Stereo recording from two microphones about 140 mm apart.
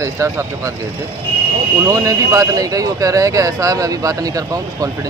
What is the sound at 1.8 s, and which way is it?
Speech, 25° right (ahead or behind).